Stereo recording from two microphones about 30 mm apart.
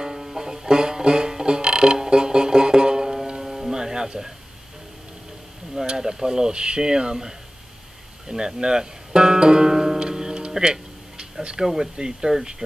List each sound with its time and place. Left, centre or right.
0.0 s music: centre
5.8 s speech: right
8.3 s speech: right
9.7 s music: centre
11.5 s speech: centre
12.0 s speech: right